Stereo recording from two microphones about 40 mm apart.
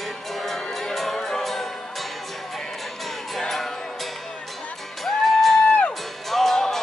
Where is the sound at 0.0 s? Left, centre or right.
Centre.